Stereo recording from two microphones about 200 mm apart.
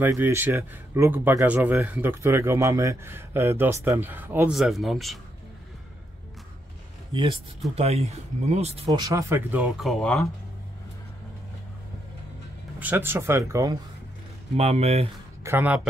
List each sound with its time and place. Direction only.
0.0 s speech: 10° right (ahead or behind)
7.7 s speech: 30° right (ahead or behind); by 10.2 s centre (ahead or behind)
12.7 s speech: 10° right (ahead or behind)
14.6 s speech: 30° right (ahead or behind)
15.4 s speech: 10° right (ahead or behind)